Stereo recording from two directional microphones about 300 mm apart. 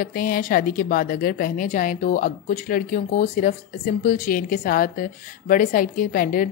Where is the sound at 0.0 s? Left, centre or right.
Left.